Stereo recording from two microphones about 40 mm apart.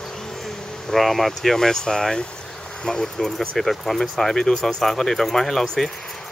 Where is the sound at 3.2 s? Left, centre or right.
Centre.